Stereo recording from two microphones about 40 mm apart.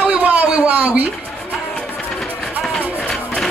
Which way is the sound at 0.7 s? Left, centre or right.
Right.